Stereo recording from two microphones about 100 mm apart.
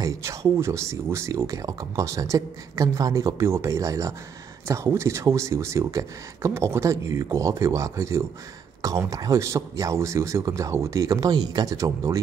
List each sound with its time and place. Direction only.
0.0 s speech: 35° right (ahead or behind)